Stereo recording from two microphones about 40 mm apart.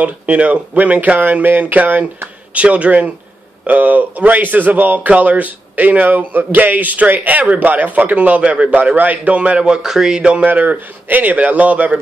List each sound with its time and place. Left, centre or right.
0.0 s speech: right
9.8 s a sound: centre
10.4 s speech: right